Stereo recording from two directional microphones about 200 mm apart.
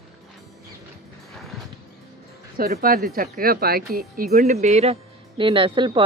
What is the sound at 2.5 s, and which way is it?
Speech, 45° right (ahead or behind).